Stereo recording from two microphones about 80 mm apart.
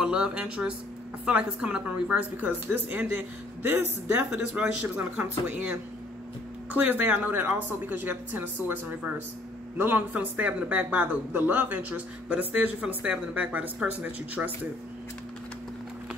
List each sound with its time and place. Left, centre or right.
0.0 s a woman's voice: centre; by 8.7 s right
9.8 s a woman's voice: right